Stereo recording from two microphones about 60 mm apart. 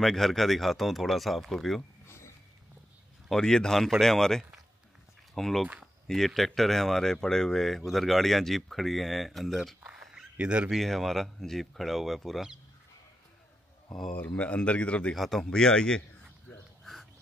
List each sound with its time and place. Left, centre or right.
0.0 s speech: centre
1.8 s a sound: left
3.3 s speech: centre
9.8 s a sound: right
10.7 s speech: centre
13.9 s speech: centre
14.2 s a man's voice: left
15.1 s speech: centre
15.5 s speech: centre
16.8 s a sound: centre